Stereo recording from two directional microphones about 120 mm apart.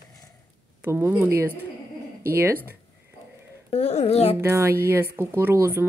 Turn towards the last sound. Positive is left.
turn(degrees=-20)  # may be behind; listen again after turning